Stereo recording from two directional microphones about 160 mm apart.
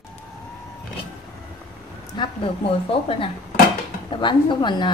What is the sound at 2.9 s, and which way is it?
Speech, 35° left (ahead or behind).